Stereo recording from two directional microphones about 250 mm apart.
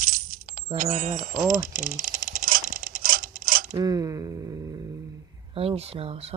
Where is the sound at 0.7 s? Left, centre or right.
Right.